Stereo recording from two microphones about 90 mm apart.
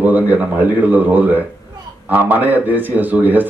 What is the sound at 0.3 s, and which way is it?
A man's voice, 20° right (ahead or behind).